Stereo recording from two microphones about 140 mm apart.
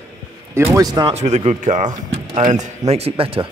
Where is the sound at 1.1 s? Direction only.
55° right (ahead or behind).